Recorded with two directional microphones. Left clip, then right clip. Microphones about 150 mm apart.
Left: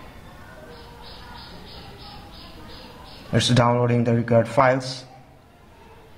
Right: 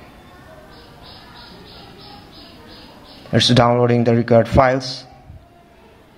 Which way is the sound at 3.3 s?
20° right (ahead or behind).